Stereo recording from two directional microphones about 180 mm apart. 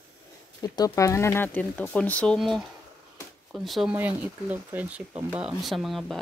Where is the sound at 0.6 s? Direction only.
20° left (ahead or behind).